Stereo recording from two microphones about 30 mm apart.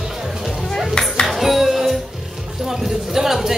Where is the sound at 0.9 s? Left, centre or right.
Left.